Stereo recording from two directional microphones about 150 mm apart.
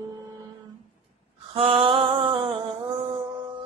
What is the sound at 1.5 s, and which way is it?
Mantra, 40° right (ahead or behind).